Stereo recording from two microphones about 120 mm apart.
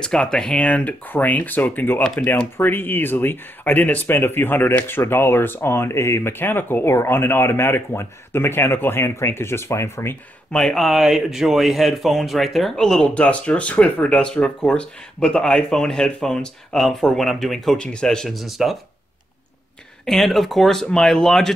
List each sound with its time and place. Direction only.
0.0 s speech: 5° left (ahead or behind); by 10.1 s 20° left (ahead or behind)
10.5 s speech: 5° left (ahead or behind)
20.1 s speech: centre (ahead or behind)